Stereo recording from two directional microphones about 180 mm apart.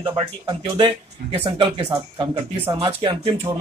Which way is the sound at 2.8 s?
30° right (ahead or behind).